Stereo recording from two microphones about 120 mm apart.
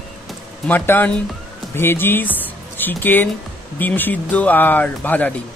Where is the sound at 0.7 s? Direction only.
15° left (ahead or behind).